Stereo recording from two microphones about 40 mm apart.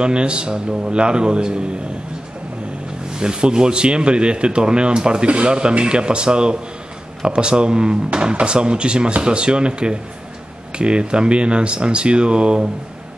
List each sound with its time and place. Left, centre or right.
0.0 s speech: right
3.1 s speech: right